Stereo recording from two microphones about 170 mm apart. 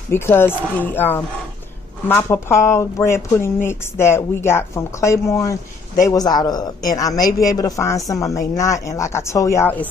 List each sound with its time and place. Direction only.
0.1 s speech: 15° left (ahead or behind)